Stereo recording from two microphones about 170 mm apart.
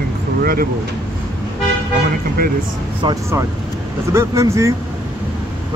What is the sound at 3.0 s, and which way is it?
Speech, 30° right (ahead or behind).